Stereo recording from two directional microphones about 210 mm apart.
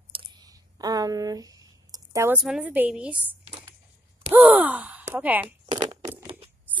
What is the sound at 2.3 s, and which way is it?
A woman's voice, 5° right (ahead or behind).